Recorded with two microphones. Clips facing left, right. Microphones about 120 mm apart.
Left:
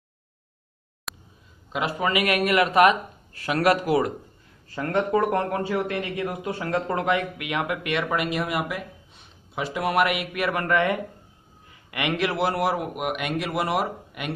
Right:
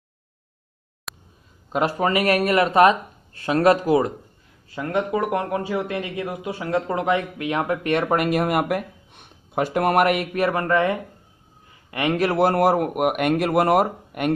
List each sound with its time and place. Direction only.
1.1 s a sound: centre (ahead or behind)
1.7 s speech: 40° right (ahead or behind)
4.6 s speech: 15° right (ahead or behind); by 14.3 s 45° right (ahead or behind)